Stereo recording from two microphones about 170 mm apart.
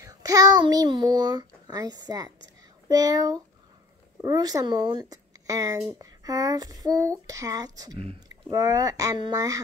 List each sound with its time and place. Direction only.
0.0 s a child's voice: 20° right (ahead or behind)